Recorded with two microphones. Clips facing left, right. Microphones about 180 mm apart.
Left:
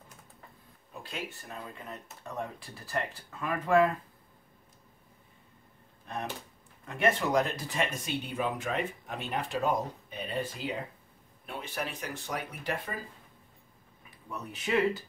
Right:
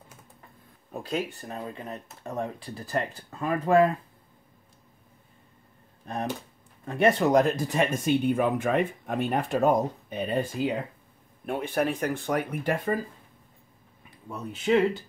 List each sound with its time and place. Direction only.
0.9 s speech: 40° right (ahead or behind)
6.8 s speech: 35° right (ahead or behind); by 12.9 s 50° right (ahead or behind)
14.3 s speech: 30° right (ahead or behind)